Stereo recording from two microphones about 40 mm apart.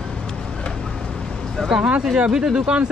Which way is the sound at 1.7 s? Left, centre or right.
Right.